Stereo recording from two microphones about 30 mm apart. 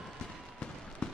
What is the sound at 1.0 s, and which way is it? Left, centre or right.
Fireworks, left.